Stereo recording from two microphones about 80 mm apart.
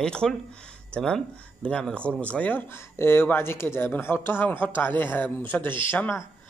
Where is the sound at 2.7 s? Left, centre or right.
Left.